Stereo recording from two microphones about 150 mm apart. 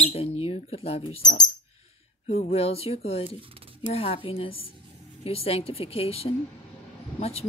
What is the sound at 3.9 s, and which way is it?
Speech, 40° left (ahead or behind).